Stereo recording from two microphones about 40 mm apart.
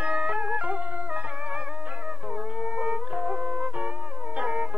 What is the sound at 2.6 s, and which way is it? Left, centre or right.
Music, right.